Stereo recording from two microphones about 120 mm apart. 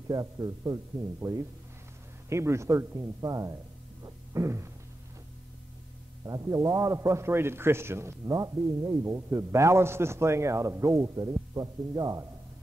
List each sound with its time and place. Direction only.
0.1 s a man's voice: 30° right (ahead or behind)
4.0 s a sound: 25° right (ahead or behind)
6.2 s a man's voice: 30° right (ahead or behind)